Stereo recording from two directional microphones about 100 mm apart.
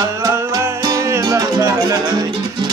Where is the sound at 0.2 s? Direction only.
35° right (ahead or behind).